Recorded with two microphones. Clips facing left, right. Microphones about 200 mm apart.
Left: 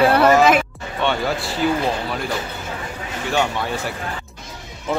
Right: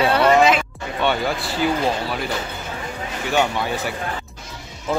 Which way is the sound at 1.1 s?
Centre (ahead or behind).